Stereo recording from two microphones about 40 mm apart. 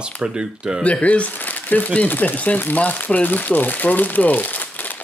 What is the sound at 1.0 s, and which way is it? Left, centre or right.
Speech, left.